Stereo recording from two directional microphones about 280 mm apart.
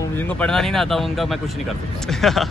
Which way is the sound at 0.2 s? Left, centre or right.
Centre.